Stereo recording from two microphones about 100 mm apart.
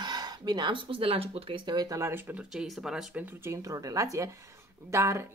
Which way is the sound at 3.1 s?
20° right (ahead or behind).